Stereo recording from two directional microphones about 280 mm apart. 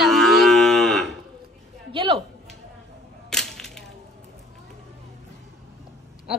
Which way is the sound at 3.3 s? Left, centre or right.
Centre.